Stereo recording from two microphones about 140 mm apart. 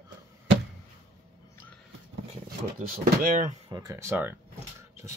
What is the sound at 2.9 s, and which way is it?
Speech, 70° right (ahead or behind).